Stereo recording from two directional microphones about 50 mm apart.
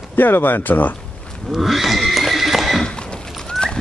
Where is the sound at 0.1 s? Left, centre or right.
Left.